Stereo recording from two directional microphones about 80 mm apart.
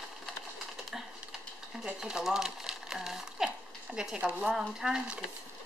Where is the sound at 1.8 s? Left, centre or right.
Centre.